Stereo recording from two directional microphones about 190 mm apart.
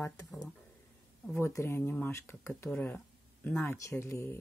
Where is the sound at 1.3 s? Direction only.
15° left (ahead or behind).